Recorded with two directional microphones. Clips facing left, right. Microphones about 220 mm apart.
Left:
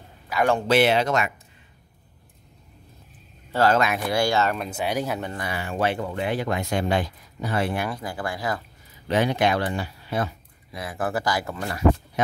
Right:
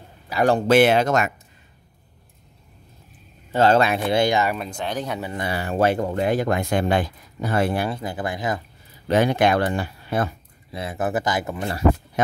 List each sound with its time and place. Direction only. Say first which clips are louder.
0.3 s a man's voice: right 3 dB; 35° right (ahead or behind)
0.7 s speech: right 5 dB; 50° right (ahead or behind)
3.5 s speech: right 3 dB; 30° right (ahead or behind)
4.6 s speech: left 1 dB; 5° left (ahead or behind)
5.3 s speech: right 4 dB; 25° right (ahead or behind)
5.6 s speech: right 5 dB; 40° right (ahead or behind)
7.7 s speech: right 3 dB; 30° right (ahead or behind)
9.0 s speech: right 3 dB; 45° right (ahead or behind)
10.7 s speech: right 3 dB; 25° right (ahead or behind)